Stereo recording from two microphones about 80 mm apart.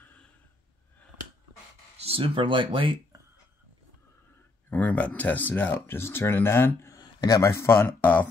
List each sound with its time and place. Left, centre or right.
2.2 s speech: right
4.6 s speech: centre
7.0 s a sound: left
7.4 s speech: left